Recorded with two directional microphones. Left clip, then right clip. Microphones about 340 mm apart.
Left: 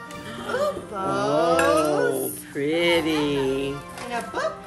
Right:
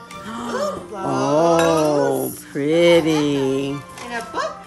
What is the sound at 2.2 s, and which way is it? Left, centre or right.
Music, centre.